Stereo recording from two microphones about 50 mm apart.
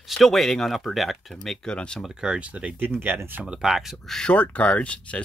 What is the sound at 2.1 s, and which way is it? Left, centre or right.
Speech, centre.